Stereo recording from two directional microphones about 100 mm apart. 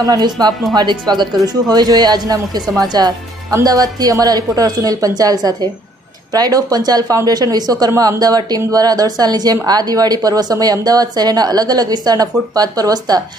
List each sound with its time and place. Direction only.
0.0 s speech: 40° right (ahead or behind)